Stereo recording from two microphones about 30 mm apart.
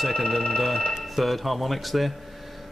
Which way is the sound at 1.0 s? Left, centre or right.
Centre.